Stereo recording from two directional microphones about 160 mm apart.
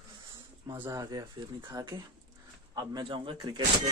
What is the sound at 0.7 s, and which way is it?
Speech, 20° right (ahead or behind).